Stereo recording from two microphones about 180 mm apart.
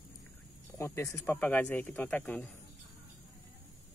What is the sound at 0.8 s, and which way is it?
Speech, 15° left (ahead or behind).